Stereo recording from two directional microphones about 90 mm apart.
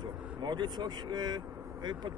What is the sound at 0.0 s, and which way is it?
A man's voice, 55° right (ahead or behind).